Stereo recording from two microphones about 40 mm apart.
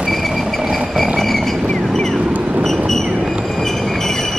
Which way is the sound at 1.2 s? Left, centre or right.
Centre.